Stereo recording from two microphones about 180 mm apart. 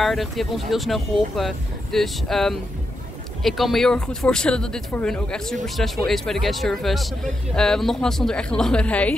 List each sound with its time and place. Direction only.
0.0 s speech: centre (ahead or behind)